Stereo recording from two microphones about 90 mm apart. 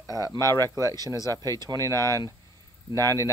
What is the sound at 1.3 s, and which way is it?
Speech, 40° right (ahead or behind).